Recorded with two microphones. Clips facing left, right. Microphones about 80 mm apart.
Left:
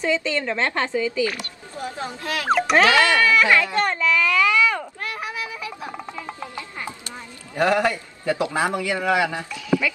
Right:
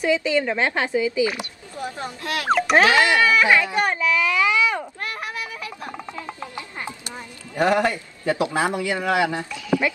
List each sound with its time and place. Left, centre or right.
0.0 s speech: centre
2.5 s speech: centre
2.8 s speech: centre
5.3 s a sound: centre
6.1 s a sound: centre
7.5 s a man's voice: right
9.8 s speech: right